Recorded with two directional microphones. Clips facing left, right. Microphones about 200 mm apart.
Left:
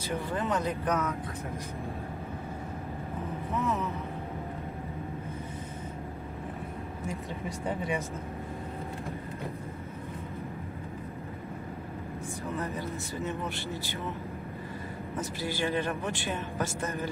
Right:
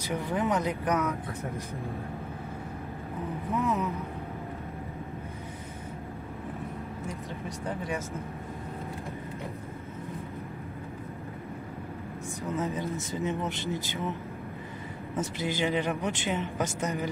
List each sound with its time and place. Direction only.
0.0 s a man's voice: 15° right (ahead or behind)
3.5 s a man's voice: 15° right (ahead or behind)
7.4 s speech: centre (ahead or behind)
12.5 s speech: 20° right (ahead or behind)
15.1 s a man's voice: 20° right (ahead or behind)